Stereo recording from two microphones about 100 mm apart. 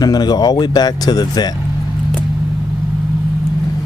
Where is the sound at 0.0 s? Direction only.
40° left (ahead or behind).